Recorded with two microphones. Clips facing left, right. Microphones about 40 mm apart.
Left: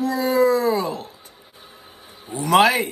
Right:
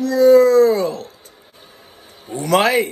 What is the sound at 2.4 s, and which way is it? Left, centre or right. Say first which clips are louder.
Wail: even; left.